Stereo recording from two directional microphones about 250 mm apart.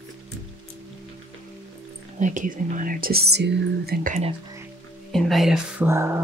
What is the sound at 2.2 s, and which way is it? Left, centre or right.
Speech, right.